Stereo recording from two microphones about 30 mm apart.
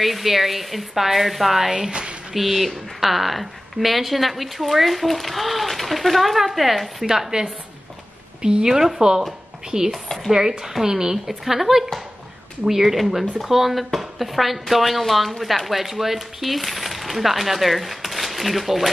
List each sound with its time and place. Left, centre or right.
0.0 s a woman's voice: centre
1.7 s speech: right
2.3 s a woman's voice: centre
7.2 s a woman's voice: right
11.2 s a woman's voice: centre